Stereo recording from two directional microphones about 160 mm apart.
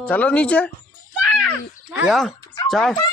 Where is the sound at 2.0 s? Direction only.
Centre (ahead or behind).